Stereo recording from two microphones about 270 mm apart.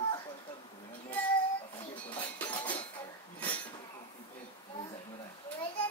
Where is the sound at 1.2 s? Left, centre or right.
Centre.